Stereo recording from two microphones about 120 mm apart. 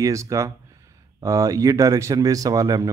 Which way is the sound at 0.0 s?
25° right (ahead or behind).